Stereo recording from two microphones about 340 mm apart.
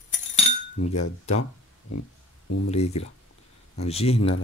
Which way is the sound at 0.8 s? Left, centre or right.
Left.